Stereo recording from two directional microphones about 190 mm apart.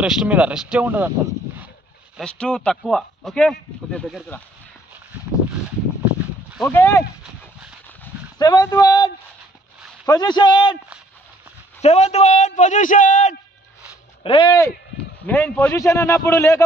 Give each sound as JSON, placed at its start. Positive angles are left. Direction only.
{"t": 0.0, "sound": "speech", "side_deg": -5}
{"t": 2.1, "sound": "speech", "side_deg": 5}
{"t": 6.0, "sound": "a sound", "side_deg": -5}
{"t": 6.7, "sound": "a man's voice", "side_deg": 15}
{"t": 8.4, "sound": "a man's voice", "side_deg": 20}
{"t": 11.8, "sound": "a man's voice", "side_deg": 35}
{"t": 14.2, "sound": "a man's voice", "side_deg": 25}
{"t": 15.2, "sound": "a man's voice", "side_deg": 10}